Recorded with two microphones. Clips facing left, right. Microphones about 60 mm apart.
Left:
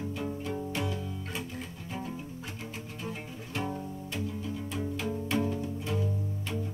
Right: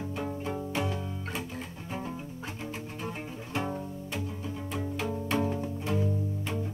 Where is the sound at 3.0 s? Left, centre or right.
Right.